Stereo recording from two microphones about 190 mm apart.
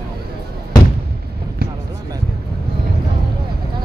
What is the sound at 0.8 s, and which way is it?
Fireworks, 20° left (ahead or behind).